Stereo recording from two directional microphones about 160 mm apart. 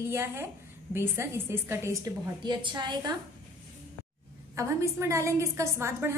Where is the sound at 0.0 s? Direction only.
15° right (ahead or behind).